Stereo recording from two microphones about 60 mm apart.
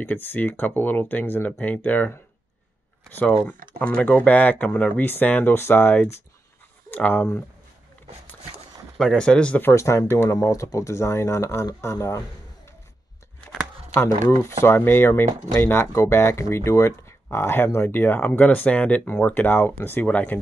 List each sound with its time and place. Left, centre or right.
0.0 s speech: left
4.0 s speech: left
5.5 s speech: left
6.9 s speech: left
8.9 s speech: centre
9.6 s speech: left
10.3 s speech: left
13.9 s speech: left
19.4 s speech: left
20.1 s speech: left